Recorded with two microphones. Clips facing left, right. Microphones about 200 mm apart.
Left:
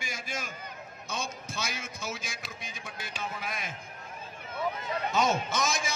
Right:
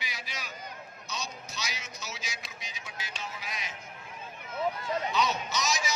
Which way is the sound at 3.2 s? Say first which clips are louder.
Left 5 dB; 55° left (ahead or behind).